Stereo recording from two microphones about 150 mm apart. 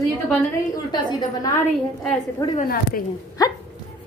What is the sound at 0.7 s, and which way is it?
Speech, 25° left (ahead or behind).